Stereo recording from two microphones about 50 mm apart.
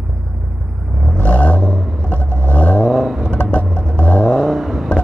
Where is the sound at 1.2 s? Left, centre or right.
Left.